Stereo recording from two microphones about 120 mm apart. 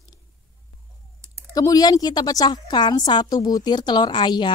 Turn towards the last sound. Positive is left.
turn(degrees=40)  # may be behind; listen again after turning